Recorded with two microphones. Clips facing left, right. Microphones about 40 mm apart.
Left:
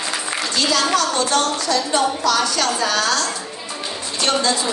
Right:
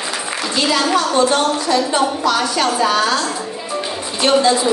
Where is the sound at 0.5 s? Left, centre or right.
Centre.